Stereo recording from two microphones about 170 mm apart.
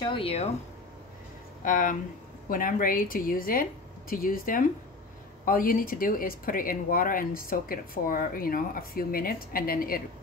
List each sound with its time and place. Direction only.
0.0 s speech: 30° left (ahead or behind)
1.6 s speech: 50° left (ahead or behind)